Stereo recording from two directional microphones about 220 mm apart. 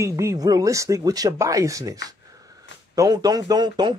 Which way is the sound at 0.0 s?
15° right (ahead or behind).